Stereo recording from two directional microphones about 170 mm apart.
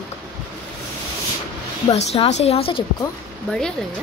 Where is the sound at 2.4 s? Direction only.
35° left (ahead or behind).